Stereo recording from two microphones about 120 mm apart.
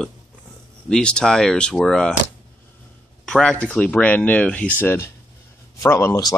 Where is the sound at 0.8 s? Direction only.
5° left (ahead or behind).